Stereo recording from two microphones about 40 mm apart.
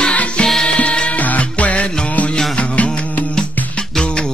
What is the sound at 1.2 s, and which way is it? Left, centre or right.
Music, left.